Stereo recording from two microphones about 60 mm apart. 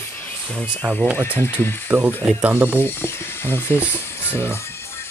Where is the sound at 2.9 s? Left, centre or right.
Left.